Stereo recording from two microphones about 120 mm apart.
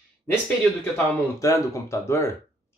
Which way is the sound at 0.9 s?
25° left (ahead or behind).